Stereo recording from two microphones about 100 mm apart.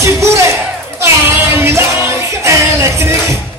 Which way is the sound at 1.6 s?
25° right (ahead or behind).